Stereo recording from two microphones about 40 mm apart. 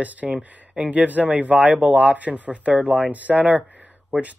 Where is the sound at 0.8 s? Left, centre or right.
Right.